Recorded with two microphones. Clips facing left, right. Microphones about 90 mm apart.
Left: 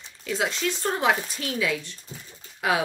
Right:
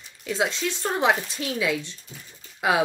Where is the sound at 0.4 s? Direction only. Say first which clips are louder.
Right 1 dB; 20° right (ahead or behind).